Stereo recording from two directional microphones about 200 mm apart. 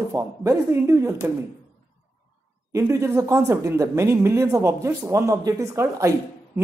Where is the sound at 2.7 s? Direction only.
15° right (ahead or behind).